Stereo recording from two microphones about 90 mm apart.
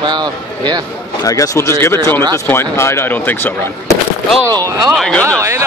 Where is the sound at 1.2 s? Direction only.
40° left (ahead or behind).